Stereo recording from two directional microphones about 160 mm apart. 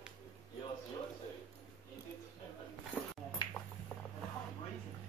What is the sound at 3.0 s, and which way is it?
Ping, 5° left (ahead or behind).